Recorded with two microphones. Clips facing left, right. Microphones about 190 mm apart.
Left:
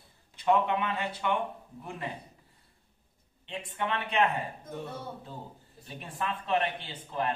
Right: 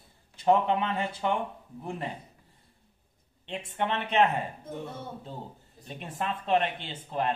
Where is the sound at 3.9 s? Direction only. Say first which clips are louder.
Right 3 dB; 20° right (ahead or behind).